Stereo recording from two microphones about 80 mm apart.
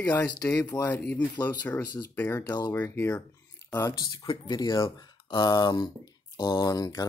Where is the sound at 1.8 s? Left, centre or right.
Left.